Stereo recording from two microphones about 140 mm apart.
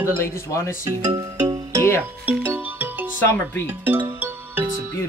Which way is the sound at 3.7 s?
15° right (ahead or behind).